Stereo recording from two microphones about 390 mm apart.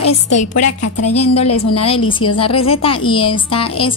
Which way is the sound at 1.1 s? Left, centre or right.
Centre.